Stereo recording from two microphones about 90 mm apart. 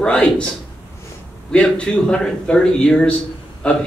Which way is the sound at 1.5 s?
15° left (ahead or behind).